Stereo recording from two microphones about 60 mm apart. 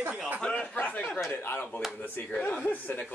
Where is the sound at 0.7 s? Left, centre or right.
Left.